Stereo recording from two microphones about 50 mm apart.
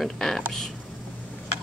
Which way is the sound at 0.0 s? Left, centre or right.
Centre.